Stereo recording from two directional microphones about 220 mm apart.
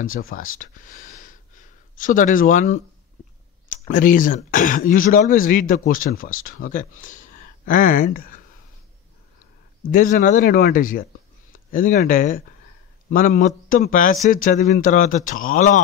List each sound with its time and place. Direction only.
0.0 s speech: 40° left (ahead or behind)
9.8 s speech: 40° left (ahead or behind)